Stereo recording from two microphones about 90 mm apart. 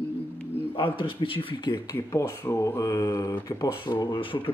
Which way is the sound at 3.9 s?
65° left (ahead or behind).